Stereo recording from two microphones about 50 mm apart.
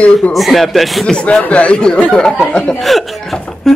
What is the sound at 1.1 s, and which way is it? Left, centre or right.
Speech, centre.